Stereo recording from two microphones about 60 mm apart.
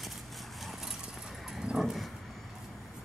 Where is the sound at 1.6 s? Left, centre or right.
Centre.